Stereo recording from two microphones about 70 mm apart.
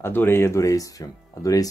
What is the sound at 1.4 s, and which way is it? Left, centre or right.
Speech, left.